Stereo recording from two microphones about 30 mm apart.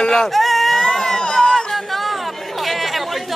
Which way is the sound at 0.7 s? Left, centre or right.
Centre.